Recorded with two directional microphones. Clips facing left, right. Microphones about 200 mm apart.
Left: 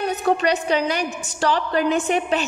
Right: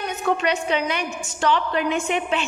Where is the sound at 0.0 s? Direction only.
35° left (ahead or behind).